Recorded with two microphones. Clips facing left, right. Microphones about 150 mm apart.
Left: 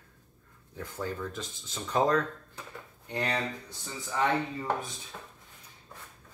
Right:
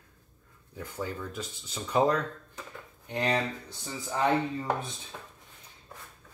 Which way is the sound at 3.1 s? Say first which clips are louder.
Right 3 dB; 25° right (ahead or behind).